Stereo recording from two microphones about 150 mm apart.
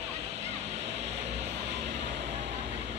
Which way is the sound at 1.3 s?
90° right.